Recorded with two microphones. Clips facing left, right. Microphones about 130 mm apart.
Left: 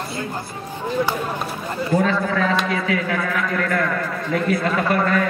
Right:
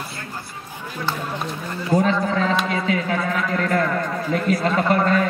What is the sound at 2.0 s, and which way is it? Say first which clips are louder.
A man's voice: even; 25° right (ahead or behind).